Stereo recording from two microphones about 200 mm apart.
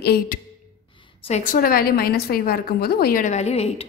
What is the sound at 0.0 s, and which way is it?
Speech, 50° left (ahead or behind).